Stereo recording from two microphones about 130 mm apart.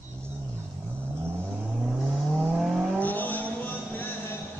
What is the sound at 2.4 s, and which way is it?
Vehicle, 5° right (ahead or behind).